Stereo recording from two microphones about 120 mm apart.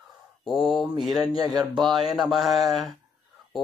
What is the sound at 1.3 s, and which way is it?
Speech, 35° right (ahead or behind).